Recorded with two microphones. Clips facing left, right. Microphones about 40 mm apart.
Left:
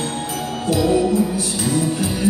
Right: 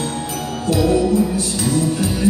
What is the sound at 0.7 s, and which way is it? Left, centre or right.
Jingle bell, left.